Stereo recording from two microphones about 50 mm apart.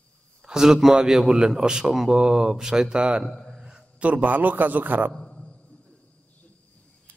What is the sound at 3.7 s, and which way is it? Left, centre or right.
A man's voice, right.